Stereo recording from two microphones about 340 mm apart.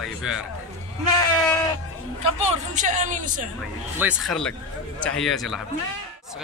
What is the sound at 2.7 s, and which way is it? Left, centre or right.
Speech, right.